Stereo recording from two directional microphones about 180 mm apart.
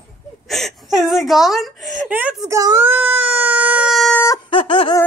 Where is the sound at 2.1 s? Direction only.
10° right (ahead or behind).